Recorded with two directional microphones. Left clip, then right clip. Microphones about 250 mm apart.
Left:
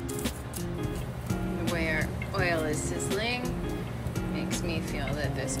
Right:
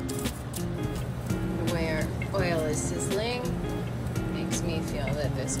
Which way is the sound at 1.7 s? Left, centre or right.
Centre.